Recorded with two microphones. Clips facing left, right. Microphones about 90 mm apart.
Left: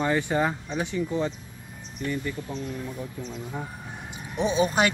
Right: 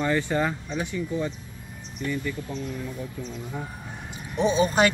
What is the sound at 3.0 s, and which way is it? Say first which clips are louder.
Speech: even; 25° left (ahead or behind).